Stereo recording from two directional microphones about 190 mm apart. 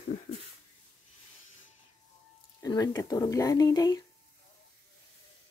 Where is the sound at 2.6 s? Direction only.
20° left (ahead or behind).